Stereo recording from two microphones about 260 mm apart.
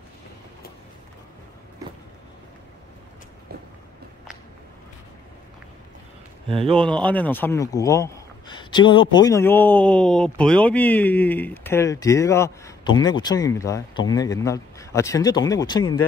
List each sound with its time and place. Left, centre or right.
6.5 s speech: right
6.8 s a man's voice: centre